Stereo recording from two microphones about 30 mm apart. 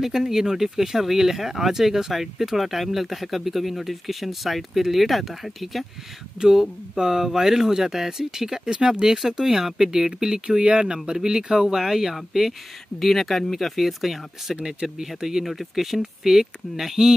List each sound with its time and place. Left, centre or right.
0.0 s speech: centre
6.4 s speech: right
10.6 s speech: right
11.1 s speech: right
13.0 s speech: centre